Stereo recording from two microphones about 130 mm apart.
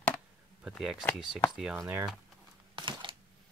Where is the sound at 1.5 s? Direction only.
5° right (ahead or behind).